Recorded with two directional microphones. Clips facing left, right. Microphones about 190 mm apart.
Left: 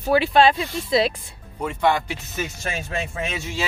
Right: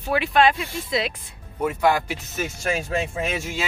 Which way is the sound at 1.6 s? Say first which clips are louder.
Right 1 dB; 5° right (ahead or behind).